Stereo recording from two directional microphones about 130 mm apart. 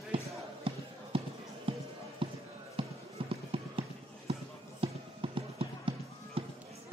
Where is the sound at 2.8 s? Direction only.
45° right (ahead or behind).